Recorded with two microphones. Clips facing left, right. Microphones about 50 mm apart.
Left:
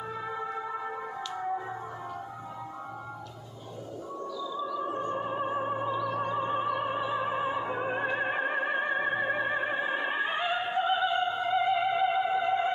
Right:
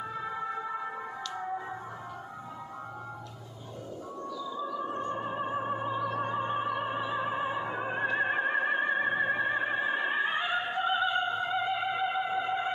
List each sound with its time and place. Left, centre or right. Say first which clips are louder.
0.1 s music: left 2 dB; centre
5.1 s music: left 2 dB; centre
5.9 s music: left 1 dB; right
6.3 s music: left 1 dB; centre
6.7 s music: left 2 dB; centre